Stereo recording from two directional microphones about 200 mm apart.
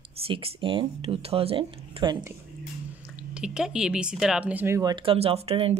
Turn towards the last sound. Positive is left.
turn(degrees=-30)  # may be behind; listen again after turning